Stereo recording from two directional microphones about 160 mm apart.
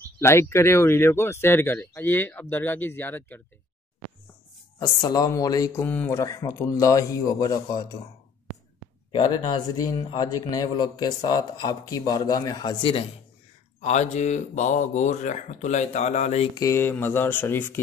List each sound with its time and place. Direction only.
0.2 s speech: 15° left (ahead or behind)
4.7 s a man's voice: 25° left (ahead or behind)
9.1 s a man's voice: 25° left (ahead or behind)
13.7 s speech: 45° left (ahead or behind)
16.5 s speech: 20° left (ahead or behind)